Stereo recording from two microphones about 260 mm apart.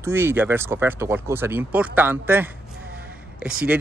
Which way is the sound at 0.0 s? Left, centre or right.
Centre.